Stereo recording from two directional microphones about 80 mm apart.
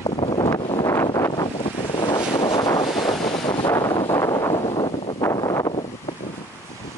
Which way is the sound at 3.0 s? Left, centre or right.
Left.